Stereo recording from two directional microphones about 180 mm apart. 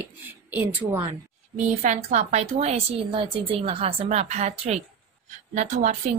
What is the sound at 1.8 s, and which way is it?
A woman's voice, 40° right (ahead or behind).